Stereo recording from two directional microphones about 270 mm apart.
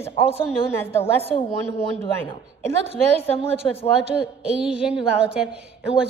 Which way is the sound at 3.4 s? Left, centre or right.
Left.